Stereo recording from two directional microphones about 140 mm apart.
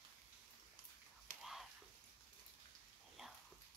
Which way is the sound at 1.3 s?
75° right (ahead or behind).